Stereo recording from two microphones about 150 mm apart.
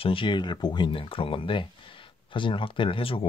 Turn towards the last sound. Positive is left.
turn(degrees=35)  # may be behind; listen again after turning